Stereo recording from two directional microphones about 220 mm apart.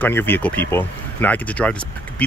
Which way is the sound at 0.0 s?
10° left (ahead or behind).